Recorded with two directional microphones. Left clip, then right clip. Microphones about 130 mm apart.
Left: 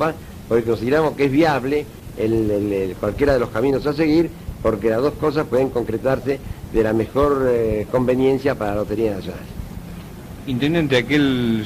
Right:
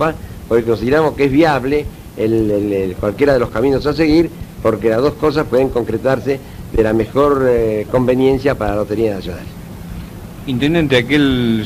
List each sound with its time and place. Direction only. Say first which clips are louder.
0.0 s a man's voice: right 4 dB; 35° left (ahead or behind)
10.4 s a man's voice: right 5 dB; 45° left (ahead or behind)